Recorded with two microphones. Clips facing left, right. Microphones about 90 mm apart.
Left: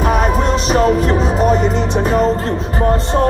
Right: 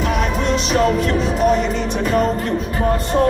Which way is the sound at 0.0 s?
40° left (ahead or behind).